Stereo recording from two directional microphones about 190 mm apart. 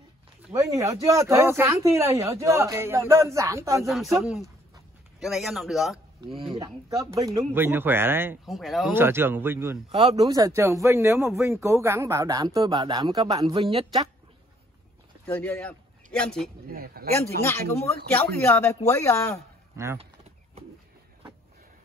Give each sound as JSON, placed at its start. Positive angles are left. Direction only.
{"t": 0.6, "sound": "speech", "side_deg": -15}
{"t": 3.8, "sound": "a man's voice", "side_deg": 0}
{"t": 6.5, "sound": "speech", "side_deg": -20}
{"t": 8.5, "sound": "a man's voice", "side_deg": 0}
{"t": 8.9, "sound": "speech", "side_deg": -10}
{"t": 9.8, "sound": "speech", "side_deg": -30}
{"t": 10.1, "sound": "speech", "side_deg": -20}
{"t": 13.6, "sound": "speech", "side_deg": -30}
{"t": 15.2, "sound": "a man's voice", "side_deg": 10}
{"t": 16.6, "sound": "speech", "side_deg": -50}
{"t": 18.1, "sound": "speech", "side_deg": 10}